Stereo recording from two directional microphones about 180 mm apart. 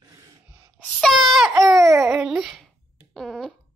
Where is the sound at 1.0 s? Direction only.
Centre (ahead or behind).